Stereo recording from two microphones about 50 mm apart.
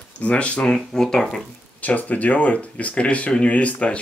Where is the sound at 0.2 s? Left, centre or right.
Left.